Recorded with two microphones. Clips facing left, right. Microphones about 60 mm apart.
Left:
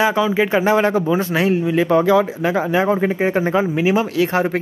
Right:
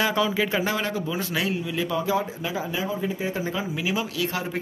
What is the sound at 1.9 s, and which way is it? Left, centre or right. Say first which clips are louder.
A man's voice: left 11 dB; left.